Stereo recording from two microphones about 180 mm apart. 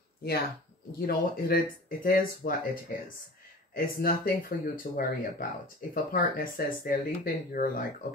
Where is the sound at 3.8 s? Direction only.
55° left (ahead or behind).